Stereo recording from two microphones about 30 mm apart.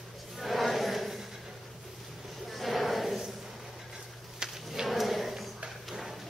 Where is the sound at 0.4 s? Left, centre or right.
Centre.